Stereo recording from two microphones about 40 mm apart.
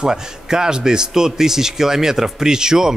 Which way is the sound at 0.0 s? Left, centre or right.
Centre.